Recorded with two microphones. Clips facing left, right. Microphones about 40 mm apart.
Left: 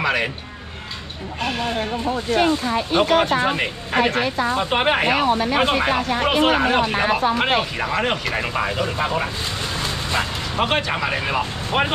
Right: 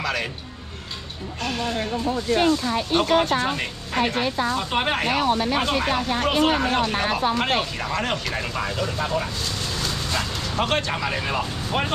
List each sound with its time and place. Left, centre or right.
0.0 s speech: left
1.4 s speech: centre
9.8 s dog: left